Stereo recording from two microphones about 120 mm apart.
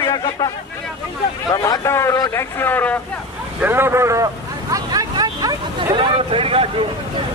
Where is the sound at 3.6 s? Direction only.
20° right (ahead or behind); by 6.6 s 50° right (ahead or behind).